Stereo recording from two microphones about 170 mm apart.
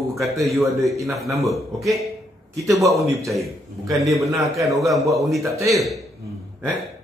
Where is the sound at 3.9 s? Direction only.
Centre (ahead or behind).